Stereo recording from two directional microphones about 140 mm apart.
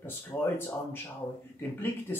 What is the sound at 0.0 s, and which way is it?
Speech, 15° left (ahead or behind).